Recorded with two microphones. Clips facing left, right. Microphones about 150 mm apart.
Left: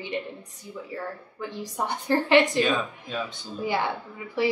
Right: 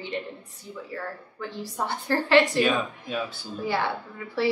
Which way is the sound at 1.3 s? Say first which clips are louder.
Even; 15° left (ahead or behind).